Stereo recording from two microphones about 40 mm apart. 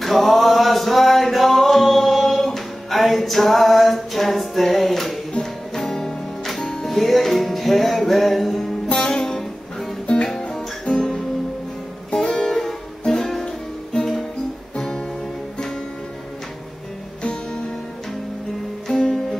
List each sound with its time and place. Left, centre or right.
0.0 s music: centre
8.8 s music: centre
18.9 s music: centre